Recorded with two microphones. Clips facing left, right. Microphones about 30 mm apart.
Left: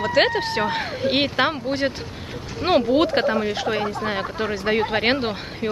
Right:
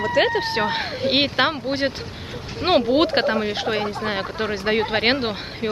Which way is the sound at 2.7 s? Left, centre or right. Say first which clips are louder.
Even; right.